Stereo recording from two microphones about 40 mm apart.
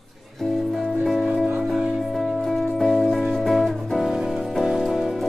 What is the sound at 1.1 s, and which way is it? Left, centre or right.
Music, centre.